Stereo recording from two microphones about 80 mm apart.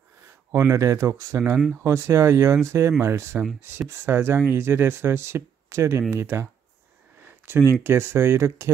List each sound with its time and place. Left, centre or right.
0.5 s speech: right
7.2 s a sound: right
7.8 s speech: right